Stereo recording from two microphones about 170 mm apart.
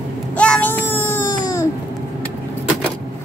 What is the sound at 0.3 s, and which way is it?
Baby cry, 10° left (ahead or behind).